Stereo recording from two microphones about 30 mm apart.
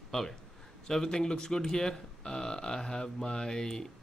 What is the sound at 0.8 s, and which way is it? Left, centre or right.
Speech, centre.